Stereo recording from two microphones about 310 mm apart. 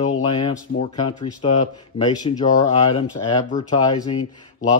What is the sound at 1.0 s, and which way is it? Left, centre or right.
Speech, centre.